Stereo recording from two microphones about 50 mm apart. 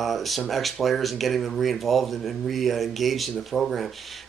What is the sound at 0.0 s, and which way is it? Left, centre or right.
Speech, centre.